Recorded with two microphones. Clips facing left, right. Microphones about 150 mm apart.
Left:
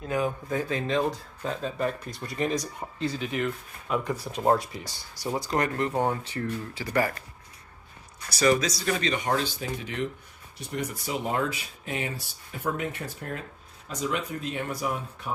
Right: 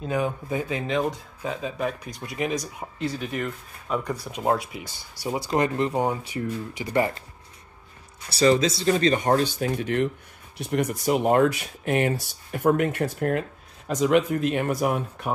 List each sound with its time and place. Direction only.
0.0 s speech: 20° right (ahead or behind)
3.9 s speech: centre (ahead or behind)
5.5 s speech: 20° right (ahead or behind)
8.3 s speech: 30° right (ahead or behind); by 15.3 s 60° right (ahead or behind)